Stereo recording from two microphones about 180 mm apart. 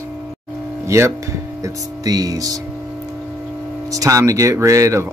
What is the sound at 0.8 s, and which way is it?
Speech, 15° right (ahead or behind).